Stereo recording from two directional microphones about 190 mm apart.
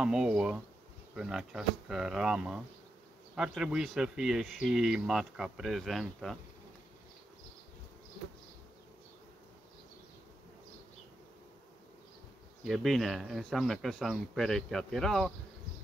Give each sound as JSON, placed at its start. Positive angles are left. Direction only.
{"t": 0.0, "sound": "speech", "side_deg": -5}
{"t": 12.6, "sound": "speech", "side_deg": 0}